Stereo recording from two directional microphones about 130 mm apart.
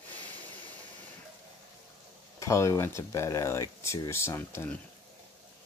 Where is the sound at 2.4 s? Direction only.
25° left (ahead or behind).